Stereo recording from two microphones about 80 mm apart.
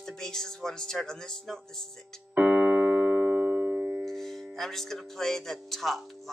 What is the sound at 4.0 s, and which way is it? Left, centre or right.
Speech, centre.